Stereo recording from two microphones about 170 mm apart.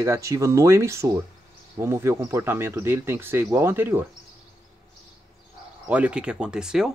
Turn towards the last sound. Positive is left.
turn(degrees=-5)  # may be behind; listen again after turning